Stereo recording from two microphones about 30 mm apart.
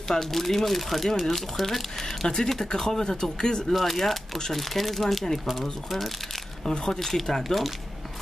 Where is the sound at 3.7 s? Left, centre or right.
Centre.